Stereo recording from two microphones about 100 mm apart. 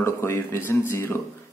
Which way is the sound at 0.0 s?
25° left (ahead or behind).